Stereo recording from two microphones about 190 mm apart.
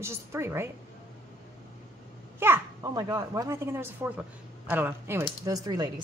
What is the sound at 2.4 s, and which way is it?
A child's voice, 15° right (ahead or behind).